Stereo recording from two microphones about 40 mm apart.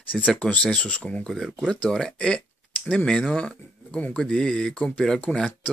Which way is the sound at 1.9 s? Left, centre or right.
Centre.